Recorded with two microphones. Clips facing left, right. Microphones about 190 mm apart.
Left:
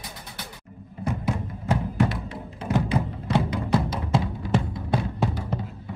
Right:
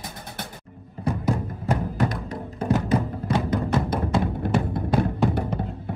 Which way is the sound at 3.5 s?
55° right (ahead or behind).